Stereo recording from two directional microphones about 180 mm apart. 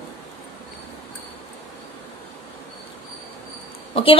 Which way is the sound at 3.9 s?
30° left (ahead or behind).